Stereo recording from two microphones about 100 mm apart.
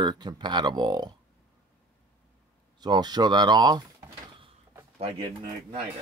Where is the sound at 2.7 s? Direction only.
45° right (ahead or behind).